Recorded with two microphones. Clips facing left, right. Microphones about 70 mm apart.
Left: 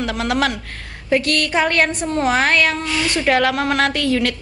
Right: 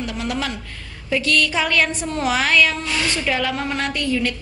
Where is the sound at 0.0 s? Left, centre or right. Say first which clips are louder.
Left 6 dB; left.